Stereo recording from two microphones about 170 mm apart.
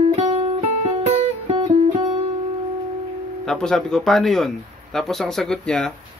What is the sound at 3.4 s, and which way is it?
Speech, centre (ahead or behind).